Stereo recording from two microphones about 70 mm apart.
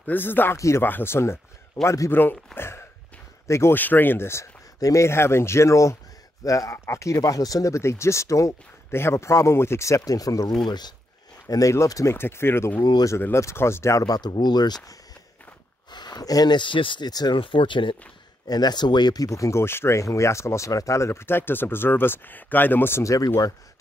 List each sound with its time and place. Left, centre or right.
0.0 s speech: left
0.6 s speech: left
0.8 s speech: left
3.7 s speech: left
4.7 s speech: left
5.0 s speech: left
8.9 s speech: left
12.1 s speech: left
14.0 s speech: left
15.9 s speech: left
18.5 s speech: left
19.2 s speech: left
23.0 s speech: left